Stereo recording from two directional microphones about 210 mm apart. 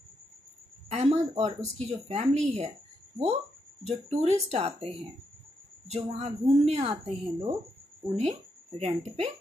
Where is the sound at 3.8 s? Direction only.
30° right (ahead or behind).